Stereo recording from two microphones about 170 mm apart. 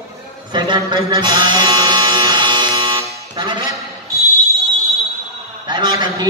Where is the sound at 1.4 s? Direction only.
25° right (ahead or behind).